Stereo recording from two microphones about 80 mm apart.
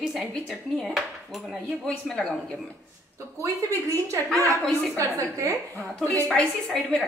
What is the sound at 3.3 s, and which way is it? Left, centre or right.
A woman's voice, right.